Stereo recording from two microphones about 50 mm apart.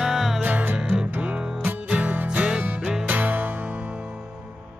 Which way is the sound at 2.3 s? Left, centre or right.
Right.